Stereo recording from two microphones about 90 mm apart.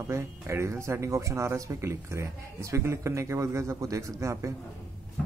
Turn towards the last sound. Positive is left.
turn(degrees=-35)  # may be behind; listen again after turning